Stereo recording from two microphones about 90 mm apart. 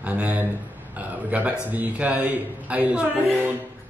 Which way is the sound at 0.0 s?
15° right (ahead or behind).